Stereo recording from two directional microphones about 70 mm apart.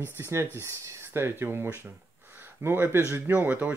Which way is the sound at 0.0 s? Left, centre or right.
Right.